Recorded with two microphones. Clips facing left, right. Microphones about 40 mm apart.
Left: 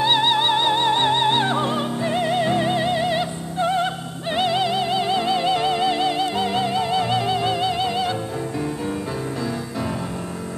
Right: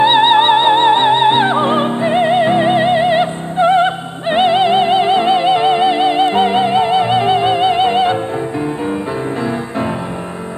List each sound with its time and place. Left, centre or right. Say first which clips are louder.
0.0 s music: right 9 dB; right